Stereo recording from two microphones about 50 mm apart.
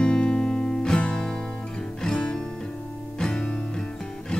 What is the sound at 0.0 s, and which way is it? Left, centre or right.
Music, centre.